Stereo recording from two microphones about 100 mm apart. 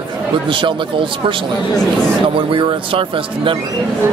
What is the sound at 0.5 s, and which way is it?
Speech, 55° right (ahead or behind).